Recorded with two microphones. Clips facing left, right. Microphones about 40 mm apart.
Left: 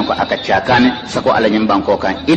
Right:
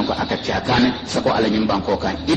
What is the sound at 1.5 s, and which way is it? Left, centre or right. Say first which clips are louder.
Speech: left 6 dB; left.